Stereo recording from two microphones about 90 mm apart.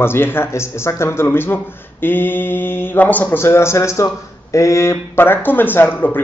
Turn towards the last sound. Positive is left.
turn(degrees=20)  # may be behind; listen again after turning